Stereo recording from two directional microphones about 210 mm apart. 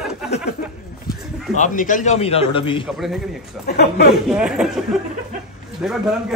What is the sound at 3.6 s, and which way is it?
Speech, 50° left (ahead or behind).